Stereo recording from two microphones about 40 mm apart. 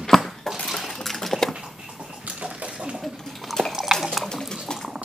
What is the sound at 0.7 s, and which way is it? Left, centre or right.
Dishes, centre.